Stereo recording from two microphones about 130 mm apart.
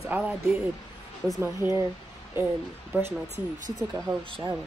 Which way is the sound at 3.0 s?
30° left (ahead or behind).